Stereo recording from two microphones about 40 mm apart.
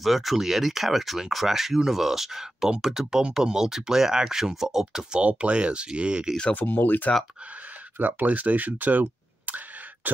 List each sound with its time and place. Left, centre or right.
0.0 s speech: centre
5.2 s speech: right
6.6 s speech: left
8.0 s speech: right
10.0 s throat clearing: right